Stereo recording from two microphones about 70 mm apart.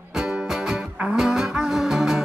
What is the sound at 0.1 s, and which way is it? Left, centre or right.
Music, centre.